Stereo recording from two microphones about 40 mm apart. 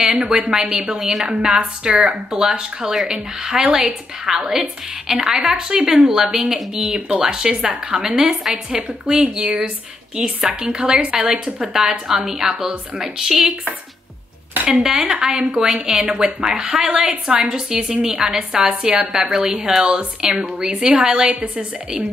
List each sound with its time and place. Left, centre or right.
0.0 s speech: centre
8.6 s a woman's voice: right
14.7 s a woman's voice: centre
19.8 s a woman's voice: right